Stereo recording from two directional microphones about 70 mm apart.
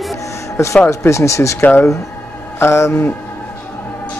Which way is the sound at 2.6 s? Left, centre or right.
Left.